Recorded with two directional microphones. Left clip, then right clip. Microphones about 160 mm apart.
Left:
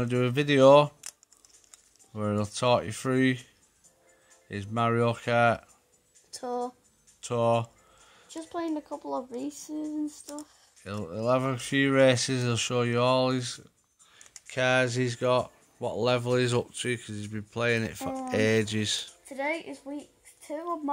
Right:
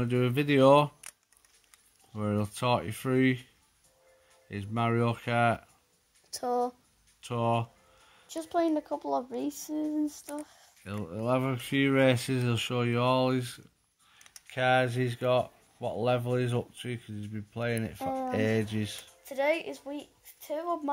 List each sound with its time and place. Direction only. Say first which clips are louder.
0.0 s speech: left 2 dB; 5° left (ahead or behind)
2.1 s speech: left 3 dB; 5° left (ahead or behind)
4.5 s speech: left 3 dB; 5° left (ahead or behind)
6.3 s speech: right 3 dB; 50° right (ahead or behind)
7.2 s a sound: left 4 dB; 5° left (ahead or behind)
8.3 s speech: right 5 dB; 50° right (ahead or behind)
10.8 s speech: left 3 dB; 5° left (ahead or behind)
19.2 s a woman's voice: right 7 dB; 55° right (ahead or behind)